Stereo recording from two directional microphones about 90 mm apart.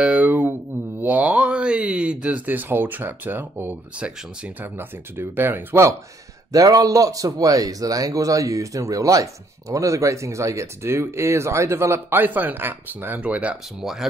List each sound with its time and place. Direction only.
0.0 s mantra: 15° right (ahead or behind)
4.4 s speech: 20° right (ahead or behind)
6.5 s speech: 40° right (ahead or behind); by 14.0 s 5° right (ahead or behind)